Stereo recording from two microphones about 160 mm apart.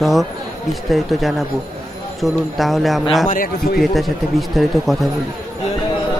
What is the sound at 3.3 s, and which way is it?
Speech, 65° left (ahead or behind).